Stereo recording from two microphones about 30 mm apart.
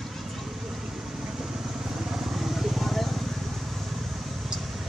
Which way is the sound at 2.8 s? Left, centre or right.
Centre.